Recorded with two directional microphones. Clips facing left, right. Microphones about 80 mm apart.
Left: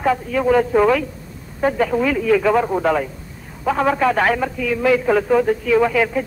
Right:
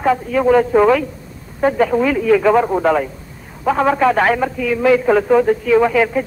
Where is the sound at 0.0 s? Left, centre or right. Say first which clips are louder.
Right 3 dB; right.